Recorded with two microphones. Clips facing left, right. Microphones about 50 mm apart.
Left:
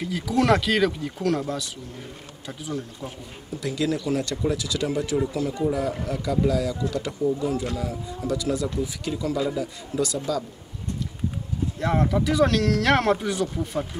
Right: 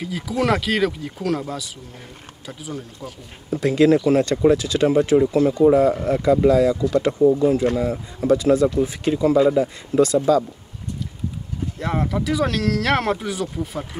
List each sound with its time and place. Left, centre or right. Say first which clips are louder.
0.0 s speech: even; centre
3.4 s speech: right 10 dB; right
11.8 s speech: left 1 dB; centre